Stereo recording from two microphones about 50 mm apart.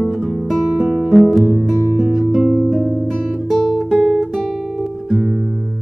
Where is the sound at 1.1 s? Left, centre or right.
Centre.